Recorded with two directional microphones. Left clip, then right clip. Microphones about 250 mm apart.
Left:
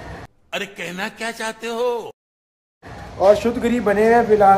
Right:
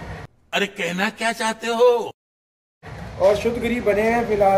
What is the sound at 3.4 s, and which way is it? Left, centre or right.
Speech, centre.